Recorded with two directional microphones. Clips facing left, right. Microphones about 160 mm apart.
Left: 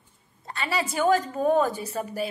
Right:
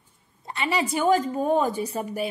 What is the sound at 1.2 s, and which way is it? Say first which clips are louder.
A woman's voice: even; 10° right (ahead or behind).